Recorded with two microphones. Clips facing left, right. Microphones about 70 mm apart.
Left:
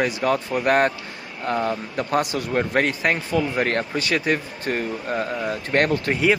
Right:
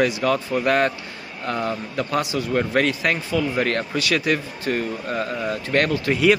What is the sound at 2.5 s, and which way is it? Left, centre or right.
Speech, left.